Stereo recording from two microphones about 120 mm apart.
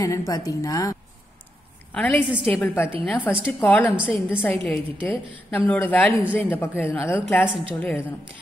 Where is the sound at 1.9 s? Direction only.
15° left (ahead or behind).